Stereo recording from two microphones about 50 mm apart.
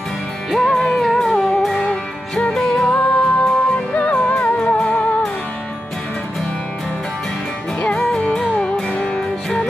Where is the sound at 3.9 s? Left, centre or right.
Left.